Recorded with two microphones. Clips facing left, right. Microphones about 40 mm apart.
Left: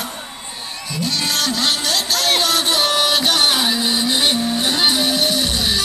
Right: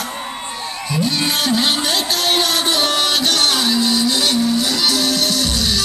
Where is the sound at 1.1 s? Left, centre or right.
Centre.